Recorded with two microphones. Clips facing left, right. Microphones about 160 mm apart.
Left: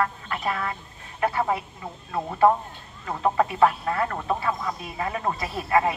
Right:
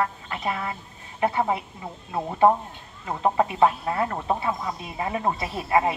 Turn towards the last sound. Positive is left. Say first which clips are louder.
# even
turn(degrees=-20)  # may be behind; listen again after turning